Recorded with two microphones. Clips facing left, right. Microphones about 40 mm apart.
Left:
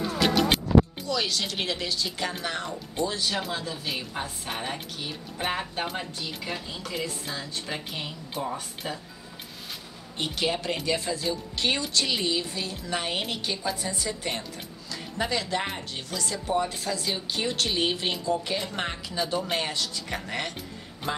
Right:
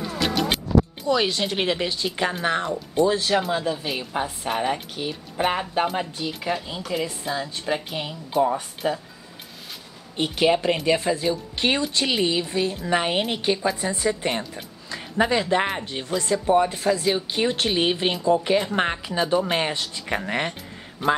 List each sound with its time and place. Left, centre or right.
0.2 s music: centre
1.0 s speech: right
3.5 s a woman's voice: centre
10.1 s speech: right
19.1 s speech: right
21.0 s a man's voice: centre